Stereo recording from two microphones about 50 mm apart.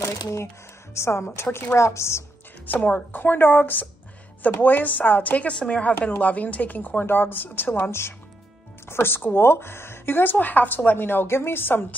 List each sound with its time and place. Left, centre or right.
0.0 s a woman's voice: left
2.6 s a woman's voice: left
7.0 s a woman's voice: left
8.8 s speech: left
10.3 s a woman's voice: left